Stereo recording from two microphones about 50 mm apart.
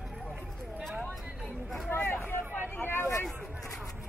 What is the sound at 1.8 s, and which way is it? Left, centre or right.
Vehicle, left.